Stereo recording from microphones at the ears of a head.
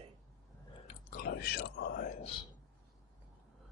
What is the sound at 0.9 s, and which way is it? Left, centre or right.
Speech, left.